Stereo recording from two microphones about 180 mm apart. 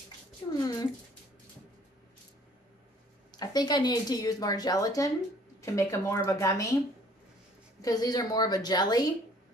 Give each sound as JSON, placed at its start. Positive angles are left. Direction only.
{"t": 0.6, "sound": "cat", "side_deg": 20}
{"t": 3.3, "sound": "a woman's voice", "side_deg": 20}
{"t": 7.8, "sound": "a woman's voice", "side_deg": 20}